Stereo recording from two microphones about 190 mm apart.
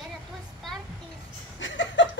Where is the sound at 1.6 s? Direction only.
80° left.